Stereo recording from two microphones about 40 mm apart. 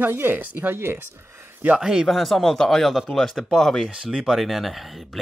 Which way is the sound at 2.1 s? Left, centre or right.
Centre.